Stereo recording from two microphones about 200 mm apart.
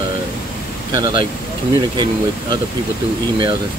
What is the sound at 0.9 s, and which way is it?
Speech, 20° right (ahead or behind).